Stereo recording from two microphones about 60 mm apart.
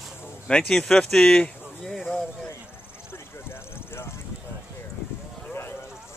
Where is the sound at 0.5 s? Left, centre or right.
Centre.